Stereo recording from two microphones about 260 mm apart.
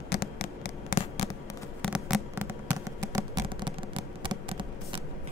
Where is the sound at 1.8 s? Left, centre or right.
Centre.